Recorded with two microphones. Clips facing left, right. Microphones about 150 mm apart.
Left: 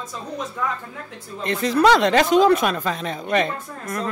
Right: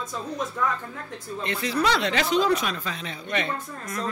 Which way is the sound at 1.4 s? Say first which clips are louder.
Left 8 dB; 45° left (ahead or behind).